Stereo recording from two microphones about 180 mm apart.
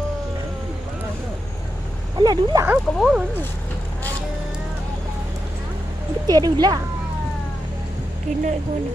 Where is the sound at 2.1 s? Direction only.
25° right (ahead or behind).